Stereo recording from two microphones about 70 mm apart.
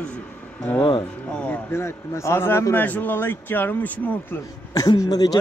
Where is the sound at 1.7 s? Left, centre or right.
Left.